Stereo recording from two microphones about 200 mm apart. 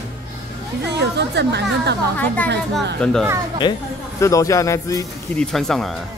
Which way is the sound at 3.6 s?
25° left (ahead or behind).